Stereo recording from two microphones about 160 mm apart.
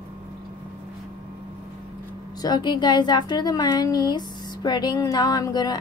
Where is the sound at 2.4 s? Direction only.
25° left (ahead or behind).